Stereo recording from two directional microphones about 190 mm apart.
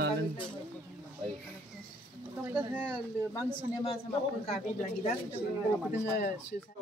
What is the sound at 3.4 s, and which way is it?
Speech, 30° left (ahead or behind).